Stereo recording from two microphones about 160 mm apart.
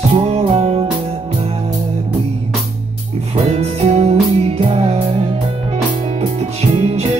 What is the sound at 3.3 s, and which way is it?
Music, 40° right (ahead or behind).